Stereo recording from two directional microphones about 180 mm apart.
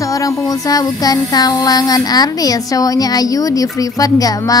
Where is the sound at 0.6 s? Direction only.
20° left (ahead or behind).